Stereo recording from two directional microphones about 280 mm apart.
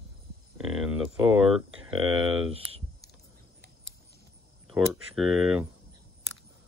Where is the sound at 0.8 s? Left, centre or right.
Centre.